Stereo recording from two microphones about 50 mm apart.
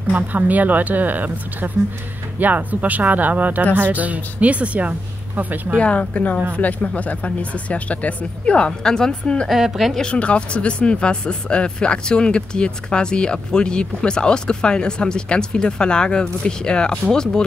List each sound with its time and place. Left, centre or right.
0.1 s speech: right
5.8 s speech: left
9.5 s a woman's voice: centre
10.1 s speech: left